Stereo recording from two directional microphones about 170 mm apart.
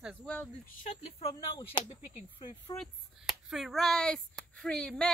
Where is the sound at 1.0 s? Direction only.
30° left (ahead or behind).